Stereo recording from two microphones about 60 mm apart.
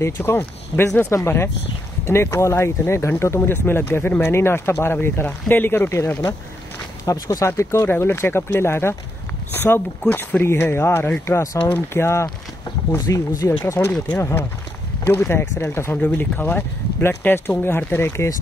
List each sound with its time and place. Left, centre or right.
0.0 s speech: left
3.3 s speech: left
7.1 s speech: left
7.4 s speech: left
9.7 s speech: left
10.4 s speech: left
11.6 s speech: left
11.9 s speech: left
13.1 s speech: left
13.7 s speech: left
15.9 s speech: left